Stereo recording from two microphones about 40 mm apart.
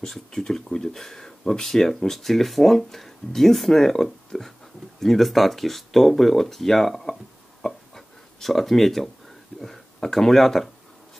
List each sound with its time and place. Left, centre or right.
0.0 s speech: centre
7.6 s a sound: centre
9.9 s speech: centre